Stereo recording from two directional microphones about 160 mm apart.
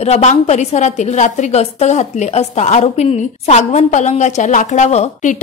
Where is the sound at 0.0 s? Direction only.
45° left (ahead or behind).